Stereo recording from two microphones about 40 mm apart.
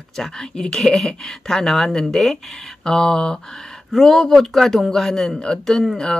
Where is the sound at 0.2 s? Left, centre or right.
Centre.